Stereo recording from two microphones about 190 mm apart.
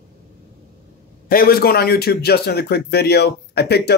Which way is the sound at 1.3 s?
50° left (ahead or behind).